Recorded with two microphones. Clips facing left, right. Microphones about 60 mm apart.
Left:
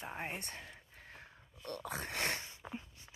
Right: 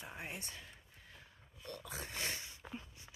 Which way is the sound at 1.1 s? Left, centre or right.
Left.